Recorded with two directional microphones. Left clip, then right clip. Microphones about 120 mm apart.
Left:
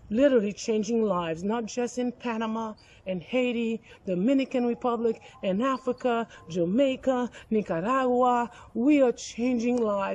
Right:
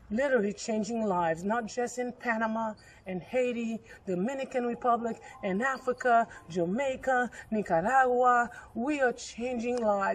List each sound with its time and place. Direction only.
0.1 s a man's voice: 20° left (ahead or behind)